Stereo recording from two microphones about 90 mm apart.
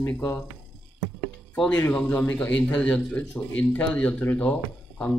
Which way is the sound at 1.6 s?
15° left (ahead or behind).